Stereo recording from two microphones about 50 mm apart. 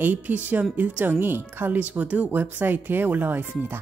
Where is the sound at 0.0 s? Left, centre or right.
Right.